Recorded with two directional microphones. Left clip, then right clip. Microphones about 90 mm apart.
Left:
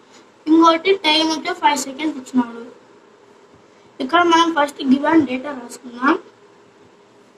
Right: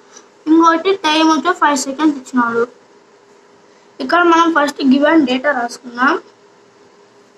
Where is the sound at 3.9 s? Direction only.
25° right (ahead or behind).